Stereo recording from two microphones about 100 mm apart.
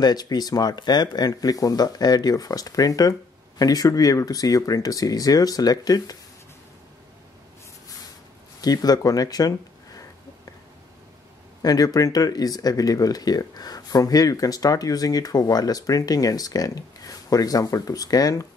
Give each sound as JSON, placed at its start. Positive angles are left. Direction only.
{"t": 0.0, "sound": "speech", "side_deg": 40}
{"t": 8.5, "sound": "speech", "side_deg": 40}
{"t": 11.6, "sound": "speech", "side_deg": 40}